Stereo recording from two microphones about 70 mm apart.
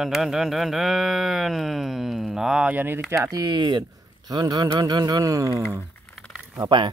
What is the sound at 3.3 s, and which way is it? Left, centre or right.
Speech, right.